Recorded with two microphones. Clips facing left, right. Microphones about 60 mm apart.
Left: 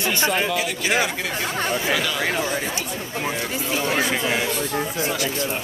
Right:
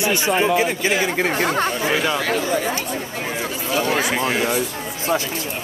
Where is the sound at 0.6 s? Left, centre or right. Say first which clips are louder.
Right 3 dB; right.